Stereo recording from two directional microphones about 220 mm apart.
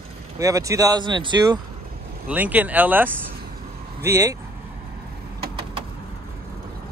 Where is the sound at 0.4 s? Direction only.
15° right (ahead or behind).